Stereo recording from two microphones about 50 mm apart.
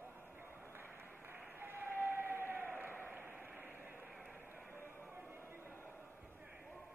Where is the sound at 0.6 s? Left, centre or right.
Right.